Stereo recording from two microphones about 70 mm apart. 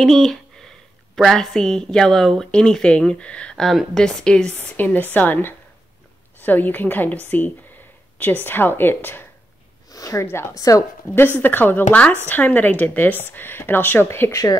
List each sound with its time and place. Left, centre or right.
0.0 s a sound: centre
1.1 s a woman's voice: centre
4.7 s speech: left
9.8 s a sound: left
10.7 s speech: left
11.3 s speech: left
14.3 s speech: left